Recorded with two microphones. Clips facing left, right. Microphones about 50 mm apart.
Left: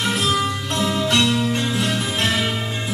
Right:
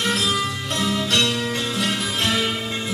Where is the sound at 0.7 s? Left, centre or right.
Left.